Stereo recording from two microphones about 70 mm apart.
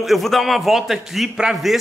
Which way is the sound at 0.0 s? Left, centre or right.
Centre.